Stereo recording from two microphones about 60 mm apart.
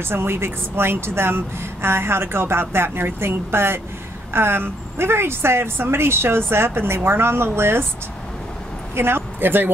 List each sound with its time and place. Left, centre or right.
0.0 s a woman's voice: right
8.9 s speech: right